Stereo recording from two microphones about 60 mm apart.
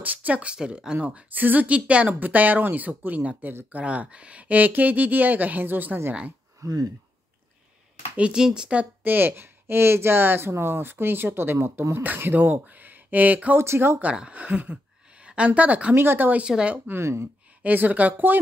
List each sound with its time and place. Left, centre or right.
0.0 s speech: right
0.9 s speech: right
6.6 s speech: right
8.2 s speech: centre
9.0 s speech: right
13.6 s speech: right
13.9 s a woman's voice: centre
16.0 s speech: right
16.4 s speech: centre
17.0 s speech: right
17.6 s speech: right